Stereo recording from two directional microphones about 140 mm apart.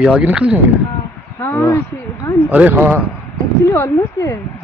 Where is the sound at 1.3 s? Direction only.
15° left (ahead or behind).